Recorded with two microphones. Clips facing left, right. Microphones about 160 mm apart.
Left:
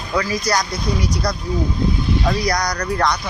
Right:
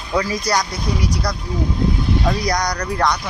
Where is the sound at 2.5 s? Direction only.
15° right (ahead or behind).